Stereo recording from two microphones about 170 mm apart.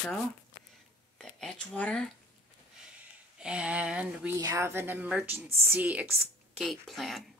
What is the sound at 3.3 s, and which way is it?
A woman's voice, 5° right (ahead or behind).